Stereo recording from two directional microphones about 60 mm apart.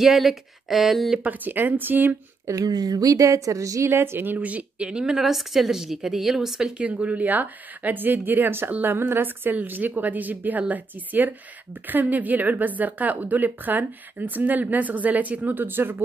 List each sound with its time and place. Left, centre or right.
0.0 s speech: centre
1.2 s speech: right
2.4 s a woman's voice: right
3.9 s speech: right
4.4 s speech: right; by 6.7 s centre
6.8 s speech: right
15.6 s speech: right